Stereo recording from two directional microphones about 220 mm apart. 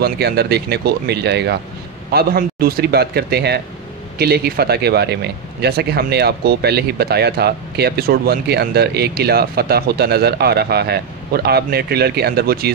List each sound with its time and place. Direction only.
0.0 s speech: 45° right (ahead or behind)